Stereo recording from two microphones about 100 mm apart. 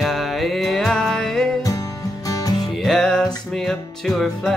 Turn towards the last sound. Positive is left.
turn(degrees=5)  # may be behind; listen again after turning